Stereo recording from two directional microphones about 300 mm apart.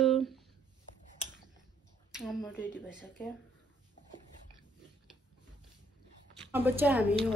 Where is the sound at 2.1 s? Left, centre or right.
Centre.